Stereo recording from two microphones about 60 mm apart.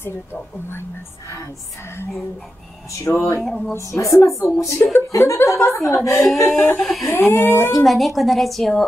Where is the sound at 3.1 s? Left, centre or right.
Left.